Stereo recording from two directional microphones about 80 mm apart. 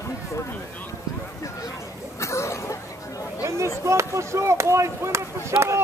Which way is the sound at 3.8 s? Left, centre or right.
Right.